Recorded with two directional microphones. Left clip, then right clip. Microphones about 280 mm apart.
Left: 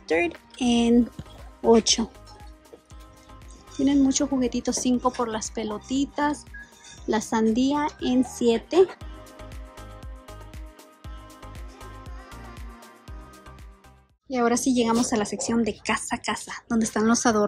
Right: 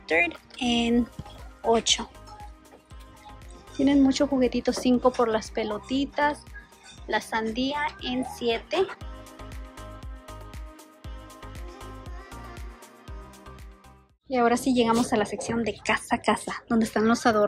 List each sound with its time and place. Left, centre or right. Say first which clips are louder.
0.0 s a woman's voice: even; centre
3.7 s a woman's voice: even; centre
8.9 s music: right 1 dB; centre
14.3 s a woman's voice: even; centre